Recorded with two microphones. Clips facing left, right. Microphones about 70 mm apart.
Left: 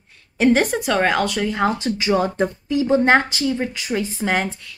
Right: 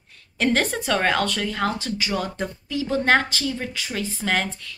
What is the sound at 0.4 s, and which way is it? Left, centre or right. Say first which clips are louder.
A woman's voice: left 5 dB; centre.